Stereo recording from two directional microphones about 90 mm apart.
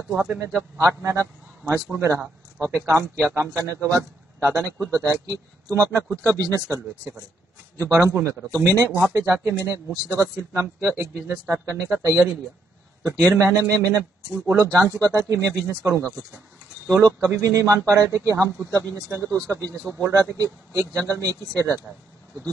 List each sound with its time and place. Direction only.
0.1 s a man's voice: 30° right (ahead or behind)
13.7 s a man's voice: 35° right (ahead or behind)